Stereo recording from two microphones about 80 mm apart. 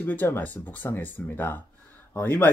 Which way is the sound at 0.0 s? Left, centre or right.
Left.